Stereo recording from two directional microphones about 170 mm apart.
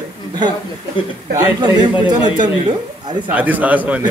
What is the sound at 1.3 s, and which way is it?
Speech, 20° right (ahead or behind).